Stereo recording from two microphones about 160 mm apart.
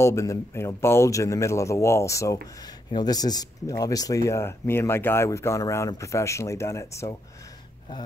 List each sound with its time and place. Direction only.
0.0 s speech: 20° left (ahead or behind)